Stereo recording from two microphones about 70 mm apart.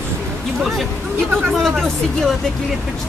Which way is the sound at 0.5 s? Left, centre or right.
Centre.